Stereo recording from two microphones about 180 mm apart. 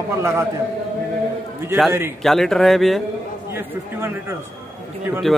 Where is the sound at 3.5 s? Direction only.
15° right (ahead or behind).